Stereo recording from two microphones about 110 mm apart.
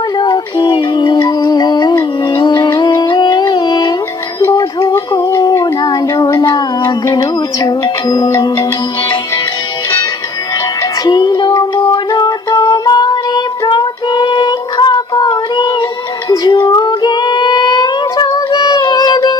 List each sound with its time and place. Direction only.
0.2 s music: 45° left (ahead or behind)
4.9 s a sound: 35° left (ahead or behind)
10.8 s music: 40° left (ahead or behind)
16.3 s child singing: 40° left (ahead or behind)